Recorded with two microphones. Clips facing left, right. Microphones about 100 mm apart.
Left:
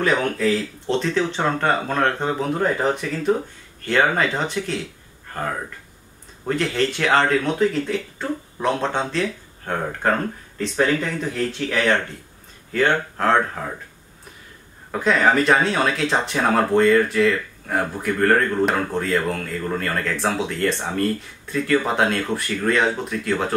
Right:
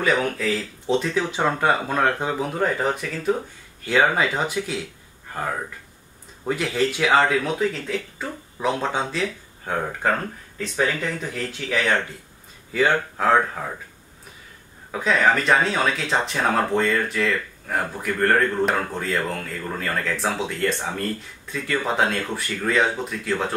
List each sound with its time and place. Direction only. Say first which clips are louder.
0.0 s speech: left 2 dB; centre (ahead or behind)
10.6 s speech: left 3 dB; 5° right (ahead or behind)
14.9 s speech: left 2 dB; centre (ahead or behind)